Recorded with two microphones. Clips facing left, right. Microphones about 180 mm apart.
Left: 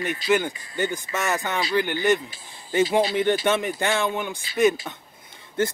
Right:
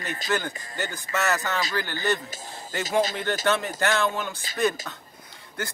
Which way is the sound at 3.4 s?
15° left (ahead or behind).